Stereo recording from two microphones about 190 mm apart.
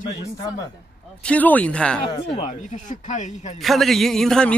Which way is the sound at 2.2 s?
40° left (ahead or behind).